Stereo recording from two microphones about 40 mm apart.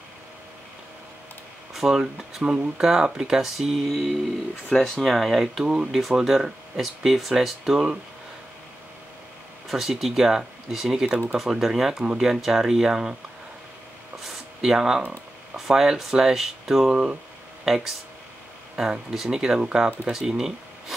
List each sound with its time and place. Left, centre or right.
1.7 s speech: centre
9.7 s speech: centre
14.2 s a sound: centre
15.5 s speech: centre
16.9 s speech: right
17.6 s speech: centre